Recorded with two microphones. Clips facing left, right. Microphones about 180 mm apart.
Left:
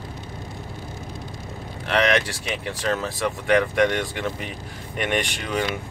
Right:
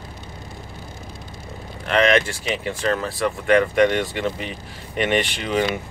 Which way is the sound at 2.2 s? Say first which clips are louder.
Right 4 dB; centre (ahead or behind).